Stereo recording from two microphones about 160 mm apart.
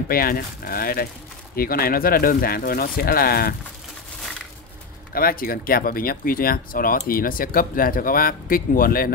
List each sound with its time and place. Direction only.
0.1 s speech: 65° left (ahead or behind)
5.1 s speech: 65° left (ahead or behind)